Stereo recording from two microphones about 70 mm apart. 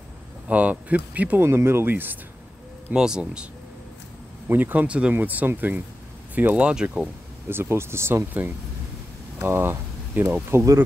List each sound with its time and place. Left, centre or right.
0.5 s speech: right
1.4 s speech: right
2.9 s speech: centre
4.5 s speech: right
7.4 s speech: right
8.3 s speech: right
10.5 s speech: right